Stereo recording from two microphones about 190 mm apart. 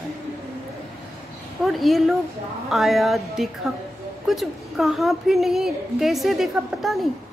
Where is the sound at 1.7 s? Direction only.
Centre (ahead or behind).